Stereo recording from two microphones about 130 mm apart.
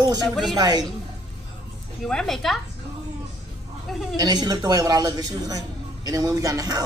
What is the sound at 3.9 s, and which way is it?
Speech, centre (ahead or behind).